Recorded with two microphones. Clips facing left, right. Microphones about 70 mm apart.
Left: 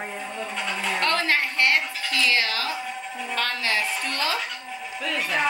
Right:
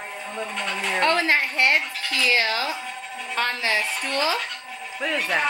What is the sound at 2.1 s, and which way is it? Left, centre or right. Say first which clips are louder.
A woman's voice: right 2 dB; centre.